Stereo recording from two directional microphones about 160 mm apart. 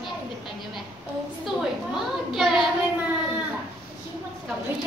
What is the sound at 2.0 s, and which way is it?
Speech, centre (ahead or behind).